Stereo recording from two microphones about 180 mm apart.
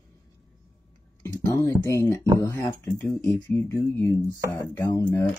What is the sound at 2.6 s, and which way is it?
Speech, 10° left (ahead or behind).